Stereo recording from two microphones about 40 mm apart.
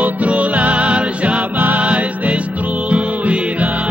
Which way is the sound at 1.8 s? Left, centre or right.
Right.